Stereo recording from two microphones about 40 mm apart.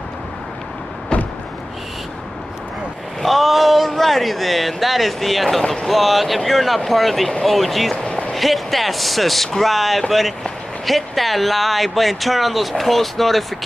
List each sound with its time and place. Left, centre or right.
1.1 s vehicle: left
3.2 s speech: centre
7.9 s a sound: left
8.3 s speech: centre